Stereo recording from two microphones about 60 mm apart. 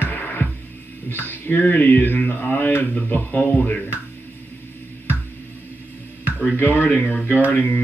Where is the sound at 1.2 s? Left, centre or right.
Left.